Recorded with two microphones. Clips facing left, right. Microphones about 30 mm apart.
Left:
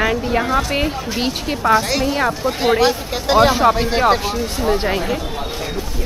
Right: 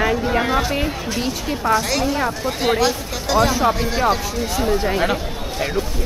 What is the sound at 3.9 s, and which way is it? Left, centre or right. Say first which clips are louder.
Speech: left 3 dB; left.